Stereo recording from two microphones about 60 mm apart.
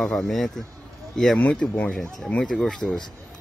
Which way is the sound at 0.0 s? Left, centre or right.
Centre.